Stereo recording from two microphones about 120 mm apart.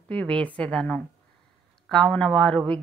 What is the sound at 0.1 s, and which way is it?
Speech, 10° left (ahead or behind).